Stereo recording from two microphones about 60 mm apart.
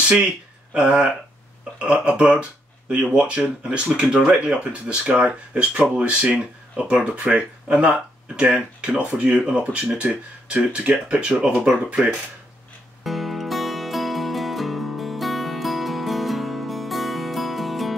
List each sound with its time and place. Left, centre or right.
1.8 s speech: centre
13.0 s music: centre